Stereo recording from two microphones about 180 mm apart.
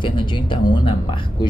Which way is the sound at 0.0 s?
25° left (ahead or behind).